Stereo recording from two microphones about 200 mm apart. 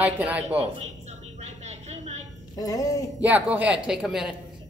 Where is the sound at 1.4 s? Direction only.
35° right (ahead or behind).